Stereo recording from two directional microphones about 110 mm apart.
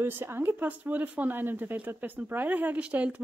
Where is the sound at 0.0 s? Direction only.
20° right (ahead or behind).